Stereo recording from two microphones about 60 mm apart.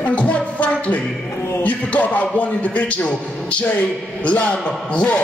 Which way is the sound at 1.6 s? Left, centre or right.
Left.